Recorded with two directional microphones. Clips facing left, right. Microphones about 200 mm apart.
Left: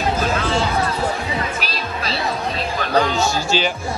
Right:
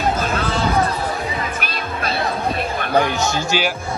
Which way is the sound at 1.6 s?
55° right (ahead or behind).